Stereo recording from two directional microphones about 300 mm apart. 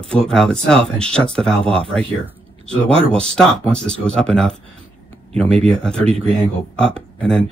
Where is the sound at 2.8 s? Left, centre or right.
Centre.